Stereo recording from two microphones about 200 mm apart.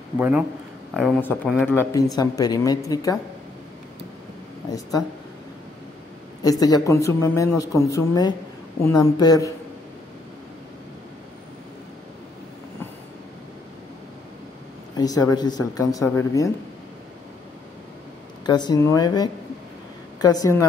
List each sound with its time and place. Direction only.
0.2 s a man's voice: 5° right (ahead or behind); by 3.2 s 15° left (ahead or behind)
6.6 s speech: 15° left (ahead or behind)
15.0 s speech: 20° left (ahead or behind)
18.4 s speech: 20° left (ahead or behind)